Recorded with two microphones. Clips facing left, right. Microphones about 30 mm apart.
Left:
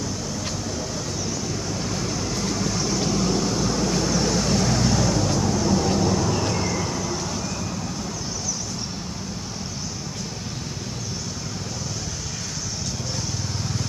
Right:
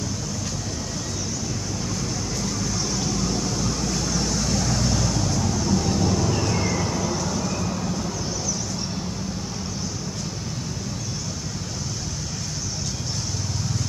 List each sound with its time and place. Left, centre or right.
1.9 s vehicle: centre